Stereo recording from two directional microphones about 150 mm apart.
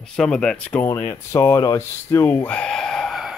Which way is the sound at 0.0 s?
5° left (ahead or behind).